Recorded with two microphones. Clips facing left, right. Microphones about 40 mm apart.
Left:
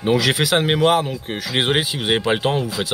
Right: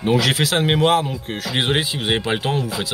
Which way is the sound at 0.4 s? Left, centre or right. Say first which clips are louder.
Left 1 dB; centre.